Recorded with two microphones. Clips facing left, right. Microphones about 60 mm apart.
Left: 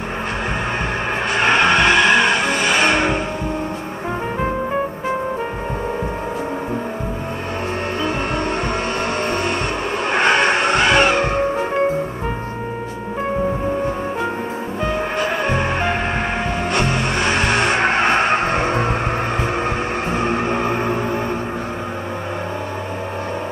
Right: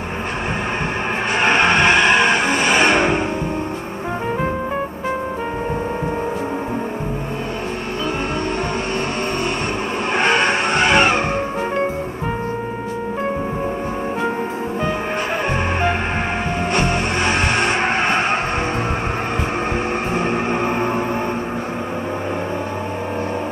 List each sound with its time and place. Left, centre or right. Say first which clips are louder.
1.4 s music: even; centre
2.1 s music: even; centre
10.9 s music: right 1 dB; centre
15.1 s music: left 1 dB; centre